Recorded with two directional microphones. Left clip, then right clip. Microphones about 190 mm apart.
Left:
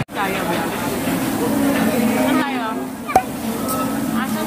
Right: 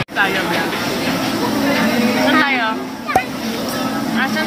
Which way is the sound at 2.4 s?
15° right (ahead or behind).